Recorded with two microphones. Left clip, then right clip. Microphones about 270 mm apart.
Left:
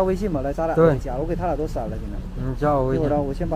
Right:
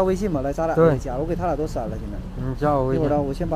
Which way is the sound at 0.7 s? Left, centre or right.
Centre.